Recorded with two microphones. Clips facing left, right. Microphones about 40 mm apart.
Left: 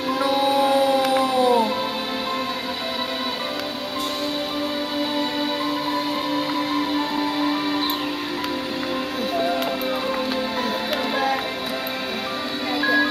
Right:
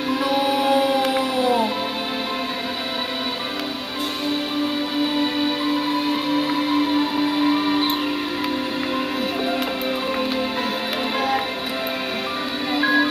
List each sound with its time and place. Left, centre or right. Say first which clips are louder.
0.3 s music: left 1 dB; centre
6.3 s music: right 3 dB; centre
12.7 s music: right 1 dB; centre